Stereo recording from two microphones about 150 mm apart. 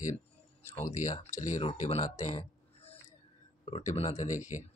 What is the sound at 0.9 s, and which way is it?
Speech, 55° left (ahead or behind).